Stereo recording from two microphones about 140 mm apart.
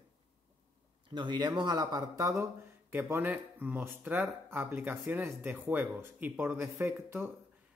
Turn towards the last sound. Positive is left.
turn(degrees=-15)  # may be behind; listen again after turning